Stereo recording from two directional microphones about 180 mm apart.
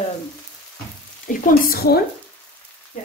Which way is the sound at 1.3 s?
55° left (ahead or behind).